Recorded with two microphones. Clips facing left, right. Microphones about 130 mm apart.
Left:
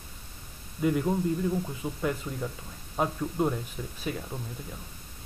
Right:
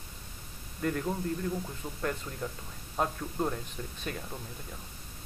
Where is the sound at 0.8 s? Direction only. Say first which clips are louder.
Left 6 dB; 10° left (ahead or behind).